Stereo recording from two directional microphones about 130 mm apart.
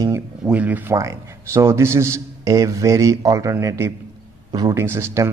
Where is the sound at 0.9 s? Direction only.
25° right (ahead or behind).